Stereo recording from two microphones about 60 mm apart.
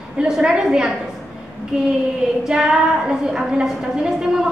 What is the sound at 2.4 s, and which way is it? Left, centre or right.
A woman's voice, centre.